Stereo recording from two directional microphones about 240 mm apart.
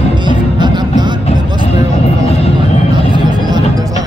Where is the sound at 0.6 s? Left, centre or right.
Centre.